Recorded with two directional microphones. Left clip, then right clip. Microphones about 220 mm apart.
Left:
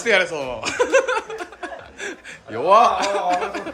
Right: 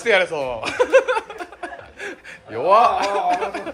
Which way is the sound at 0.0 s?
5° left (ahead or behind).